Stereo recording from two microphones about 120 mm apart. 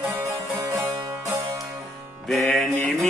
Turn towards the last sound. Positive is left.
turn(degrees=0)  # may be behind; listen again after turning